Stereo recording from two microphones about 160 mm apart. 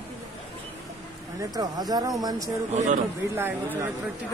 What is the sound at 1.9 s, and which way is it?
Speech, 25° right (ahead or behind).